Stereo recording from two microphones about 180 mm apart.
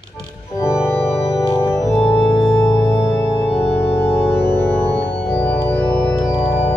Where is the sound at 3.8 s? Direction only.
15° left (ahead or behind).